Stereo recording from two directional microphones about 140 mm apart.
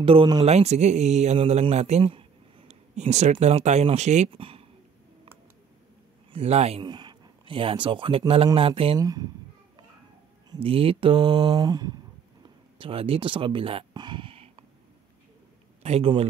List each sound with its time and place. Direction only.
0.0 s speech: 40° right (ahead or behind)
0.5 s a man's voice: 50° right (ahead or behind)
4.3 s speech: 40° right (ahead or behind)
6.3 s a man's voice: 50° right (ahead or behind)
6.8 s a man's voice: 30° right (ahead or behind)
8.9 s speech: 25° right (ahead or behind)
10.6 s speech: 40° right (ahead or behind)
12.7 s speech: 40° right (ahead or behind)
15.8 s a man's voice: 50° right (ahead or behind)